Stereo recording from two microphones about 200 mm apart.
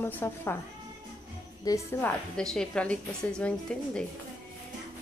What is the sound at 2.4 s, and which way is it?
A woman's voice, 5° left (ahead or behind).